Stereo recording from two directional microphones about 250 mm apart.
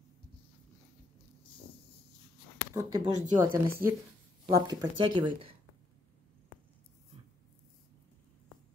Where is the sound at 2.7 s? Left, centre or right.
Centre.